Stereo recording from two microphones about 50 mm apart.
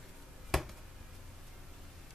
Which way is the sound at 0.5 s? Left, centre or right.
Centre.